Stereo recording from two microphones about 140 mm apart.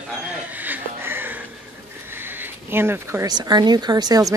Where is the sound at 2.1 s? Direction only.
15° right (ahead or behind).